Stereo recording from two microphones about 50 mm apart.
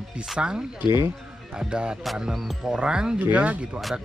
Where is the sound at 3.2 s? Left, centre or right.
Right.